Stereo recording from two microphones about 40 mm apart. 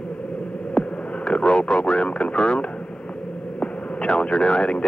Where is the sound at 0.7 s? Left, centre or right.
Left.